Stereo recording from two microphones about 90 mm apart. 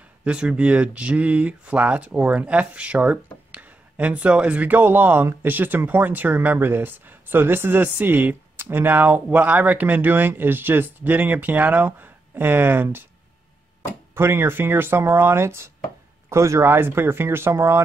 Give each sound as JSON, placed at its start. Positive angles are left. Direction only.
{"t": 0.2, "sound": "speech", "side_deg": -10}
{"t": 14.1, "sound": "speech", "side_deg": -25}